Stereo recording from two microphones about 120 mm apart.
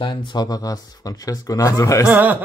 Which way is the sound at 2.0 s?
15° right (ahead or behind).